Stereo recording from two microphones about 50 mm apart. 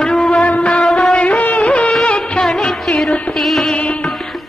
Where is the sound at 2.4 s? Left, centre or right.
Centre.